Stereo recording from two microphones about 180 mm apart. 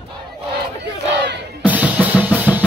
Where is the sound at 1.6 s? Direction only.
10° right (ahead or behind).